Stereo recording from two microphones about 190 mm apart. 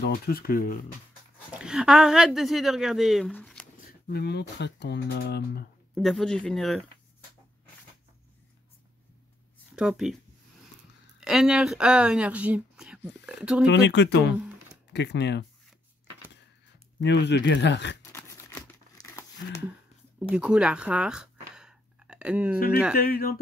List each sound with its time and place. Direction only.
0.0 s speech: 50° left (ahead or behind)
1.6 s a woman's voice: 5° right (ahead or behind)
3.3 s a sound: 5° left (ahead or behind)
4.1 s speech: 60° left (ahead or behind)
5.9 s a woman's voice: centre (ahead or behind)
9.8 s a woman's voice: 5° right (ahead or behind)
11.1 s a woman's voice: 5° right (ahead or behind)
13.7 s speech: 70° left (ahead or behind)
17.0 s speech: 65° left (ahead or behind)
18.1 s crumpling: 15° left (ahead or behind)
20.2 s a sound: 5° right (ahead or behind)
22.9 s speech: 50° left (ahead or behind)